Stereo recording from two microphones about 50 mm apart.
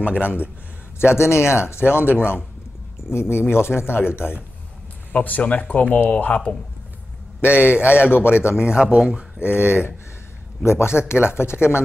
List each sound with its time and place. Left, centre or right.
0.0 s speech: right
0.9 s speech: left
3.1 s speech: left
5.1 s speech: left
7.4 s speech: right
8.0 s speech: left
8.3 s speech: right
9.7 s speech: left